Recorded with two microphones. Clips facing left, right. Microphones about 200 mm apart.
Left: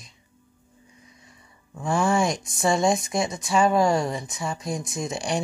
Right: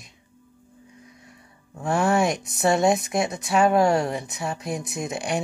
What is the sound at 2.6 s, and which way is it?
Speech, 5° right (ahead or behind).